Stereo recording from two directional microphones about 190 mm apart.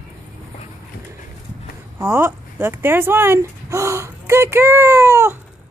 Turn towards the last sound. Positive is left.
turn(degrees=-15)  # may be behind; listen again after turning